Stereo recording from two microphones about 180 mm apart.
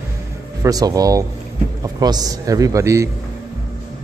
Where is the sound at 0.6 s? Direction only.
20° right (ahead or behind).